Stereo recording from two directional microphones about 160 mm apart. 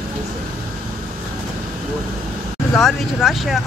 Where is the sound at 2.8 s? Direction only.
Centre (ahead or behind).